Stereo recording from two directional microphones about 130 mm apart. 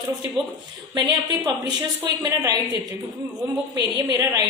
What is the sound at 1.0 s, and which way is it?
A woman's voice, 35° right (ahead or behind).